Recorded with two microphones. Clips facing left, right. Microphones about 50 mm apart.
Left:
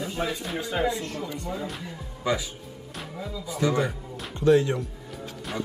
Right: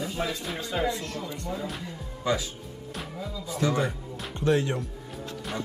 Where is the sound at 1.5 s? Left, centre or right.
Centre.